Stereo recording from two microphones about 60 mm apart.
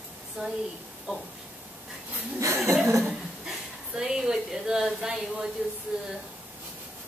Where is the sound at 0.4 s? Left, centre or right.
Centre.